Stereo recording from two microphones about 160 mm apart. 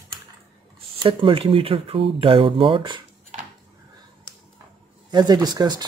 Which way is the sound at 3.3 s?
45° right (ahead or behind).